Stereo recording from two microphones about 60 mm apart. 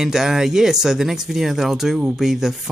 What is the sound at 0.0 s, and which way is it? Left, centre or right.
Speech, centre.